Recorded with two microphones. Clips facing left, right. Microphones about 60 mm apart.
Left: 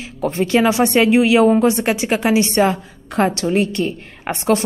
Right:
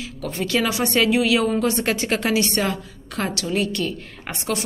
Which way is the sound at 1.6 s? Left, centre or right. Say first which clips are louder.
Left 5 dB; centre.